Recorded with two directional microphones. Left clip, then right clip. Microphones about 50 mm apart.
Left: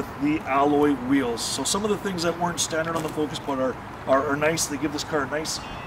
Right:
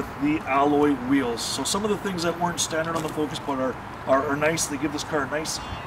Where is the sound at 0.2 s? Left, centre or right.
Centre.